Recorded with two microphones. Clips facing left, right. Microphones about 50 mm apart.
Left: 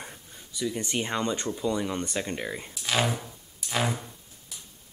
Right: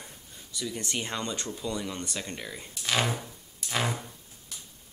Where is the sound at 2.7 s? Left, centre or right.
Centre.